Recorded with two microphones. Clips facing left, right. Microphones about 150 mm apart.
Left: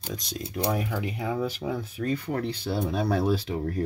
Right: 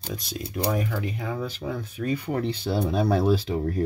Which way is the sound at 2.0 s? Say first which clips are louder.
Right 2 dB; 15° right (ahead or behind).